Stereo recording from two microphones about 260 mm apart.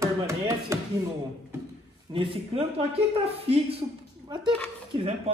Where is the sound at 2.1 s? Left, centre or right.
Centre.